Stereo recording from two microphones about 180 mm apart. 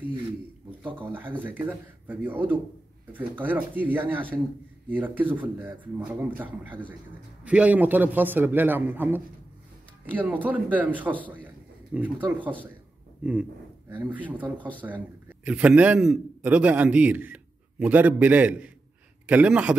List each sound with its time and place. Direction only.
0.8 s speech: 30° right (ahead or behind)
1.1 s speech: 10° right (ahead or behind)
11.4 s wild animals: 10° right (ahead or behind)
13.2 s a man's voice: 5° right (ahead or behind)